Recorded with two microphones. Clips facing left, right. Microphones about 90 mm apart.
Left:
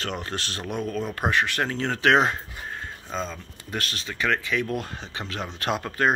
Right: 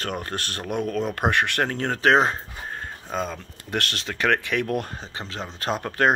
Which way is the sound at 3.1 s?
55° right (ahead or behind).